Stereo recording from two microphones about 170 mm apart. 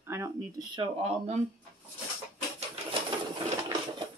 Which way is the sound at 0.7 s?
30° right (ahead or behind).